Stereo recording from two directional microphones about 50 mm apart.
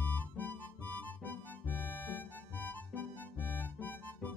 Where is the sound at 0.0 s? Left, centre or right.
Left.